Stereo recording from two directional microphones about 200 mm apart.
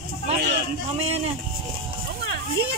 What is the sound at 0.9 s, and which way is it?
Speech, 30° right (ahead or behind).